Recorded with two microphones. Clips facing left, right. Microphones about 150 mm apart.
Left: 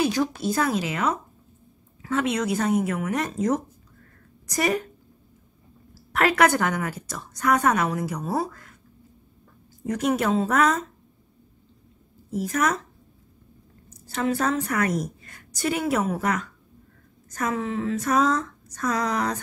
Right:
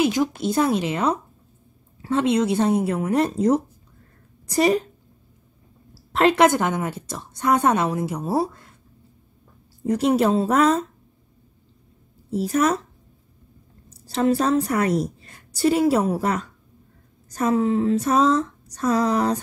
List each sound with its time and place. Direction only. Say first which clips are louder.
0.0 s a woman's voice: right 3 dB; 20° right (ahead or behind)
6.1 s a woman's voice: right 3 dB; 25° right (ahead or behind)
9.8 s a woman's voice: right 4 dB; 30° right (ahead or behind)
12.3 s a woman's voice: right 4 dB; 30° right (ahead or behind)
13.8 s a woman's voice: right 5 dB; 35° right (ahead or behind)